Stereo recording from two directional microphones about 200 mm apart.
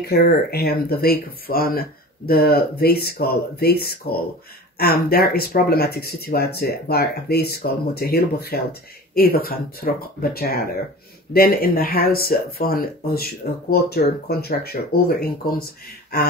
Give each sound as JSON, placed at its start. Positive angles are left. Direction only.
{"t": 0.0, "sound": "speech", "side_deg": 50}